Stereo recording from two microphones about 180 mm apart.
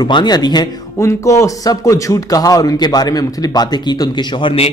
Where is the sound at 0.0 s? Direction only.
25° left (ahead or behind).